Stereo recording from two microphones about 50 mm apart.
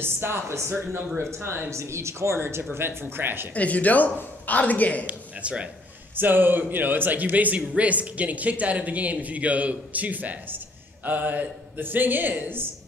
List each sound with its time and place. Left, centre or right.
0.0 s speech: right
1.7 s speech: right
3.5 s speech: left
5.0 s a man's voice: right
6.1 s a man's voice: right